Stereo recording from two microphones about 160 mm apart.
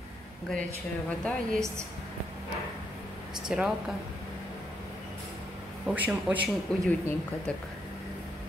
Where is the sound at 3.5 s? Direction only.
5° right (ahead or behind).